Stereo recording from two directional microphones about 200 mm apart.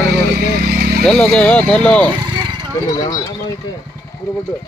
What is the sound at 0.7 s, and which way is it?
Vehicle, 50° right (ahead or behind).